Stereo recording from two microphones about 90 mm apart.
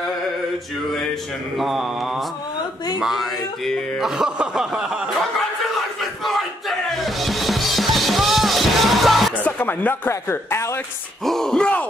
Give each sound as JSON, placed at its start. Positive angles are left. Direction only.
{"t": 1.6, "sound": "speech", "side_deg": 0}
{"t": 4.0, "sound": "chuckle", "side_deg": -5}
{"t": 5.9, "sound": "music", "side_deg": 0}
{"t": 9.4, "sound": "speech", "side_deg": 20}
{"t": 11.2, "sound": "speech", "side_deg": 5}